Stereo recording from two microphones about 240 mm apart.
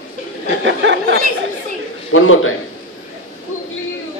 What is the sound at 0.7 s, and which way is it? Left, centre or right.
Speech, right.